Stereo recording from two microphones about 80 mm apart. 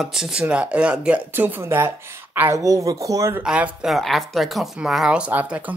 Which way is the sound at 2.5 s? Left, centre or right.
Right.